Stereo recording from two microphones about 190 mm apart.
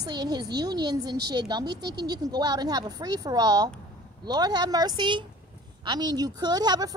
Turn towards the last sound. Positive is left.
turn(degrees=-20)  # may be behind; listen again after turning